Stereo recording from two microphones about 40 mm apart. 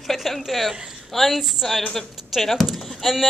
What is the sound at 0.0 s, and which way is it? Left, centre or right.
Speech, centre.